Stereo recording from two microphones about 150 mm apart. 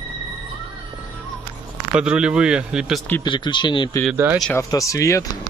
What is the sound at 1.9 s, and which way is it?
Speech, 5° right (ahead or behind).